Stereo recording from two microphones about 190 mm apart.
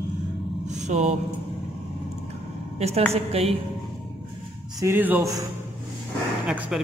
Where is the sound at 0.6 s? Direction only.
40° right (ahead or behind).